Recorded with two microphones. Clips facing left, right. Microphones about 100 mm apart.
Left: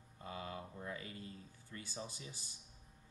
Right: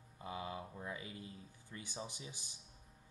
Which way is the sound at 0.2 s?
20° right (ahead or behind).